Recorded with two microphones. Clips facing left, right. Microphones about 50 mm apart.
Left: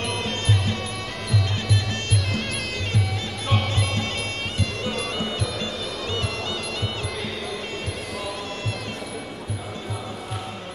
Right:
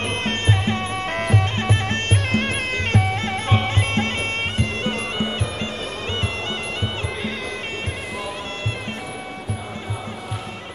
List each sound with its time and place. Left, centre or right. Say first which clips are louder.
0.0 s music: right 3 dB; right